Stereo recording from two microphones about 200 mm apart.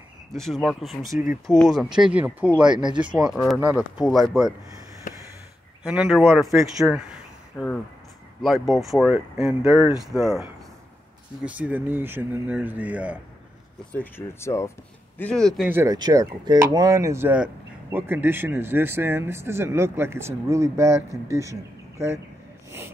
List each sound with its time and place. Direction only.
0.3 s speech: centre (ahead or behind)
2.7 s speech: 20° right (ahead or behind)
3.3 s speech: centre (ahead or behind)
5.1 s a sound: 40° left (ahead or behind)
5.9 s speech: 5° right (ahead or behind)
11.4 s speech: 5° right (ahead or behind)
13.9 s speech: 10° left (ahead or behind)
15.7 s speech: 15° right (ahead or behind)